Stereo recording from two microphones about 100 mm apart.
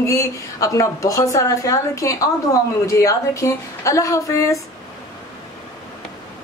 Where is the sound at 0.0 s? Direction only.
30° left (ahead or behind).